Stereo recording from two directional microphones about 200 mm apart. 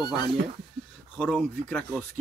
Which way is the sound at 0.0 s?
20° left (ahead or behind).